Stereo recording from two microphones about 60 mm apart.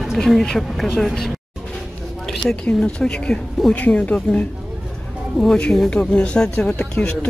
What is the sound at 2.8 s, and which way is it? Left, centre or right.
Speech, centre.